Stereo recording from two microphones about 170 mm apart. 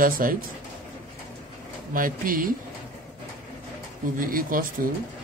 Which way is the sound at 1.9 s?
55° right (ahead or behind).